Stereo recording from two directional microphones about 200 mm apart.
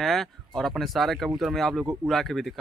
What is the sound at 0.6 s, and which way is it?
Speech, centre (ahead or behind).